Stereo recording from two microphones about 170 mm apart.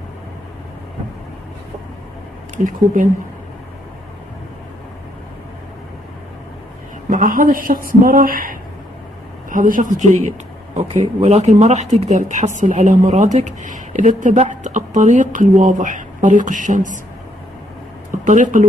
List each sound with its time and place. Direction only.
2.5 s speech: 50° right (ahead or behind)
7.1 s a sound: 50° right (ahead or behind)
9.5 s speech: 50° right (ahead or behind)
10.9 s speech: 35° right (ahead or behind)
18.2 s speech: 45° right (ahead or behind)